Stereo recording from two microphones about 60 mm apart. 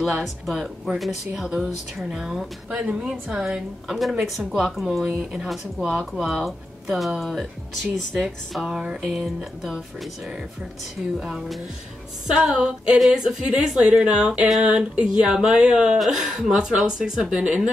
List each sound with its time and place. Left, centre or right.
0.0 s speech: centre
5.2 s speech: centre
6.4 s speech: centre
12.3 s speech: centre
16.0 s speech: centre